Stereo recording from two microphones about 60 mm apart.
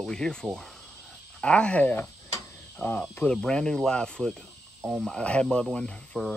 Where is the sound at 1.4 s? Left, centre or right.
Centre.